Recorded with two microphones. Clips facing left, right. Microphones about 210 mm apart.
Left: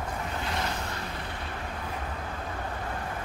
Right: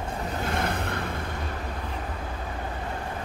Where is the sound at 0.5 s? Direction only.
55° right (ahead or behind).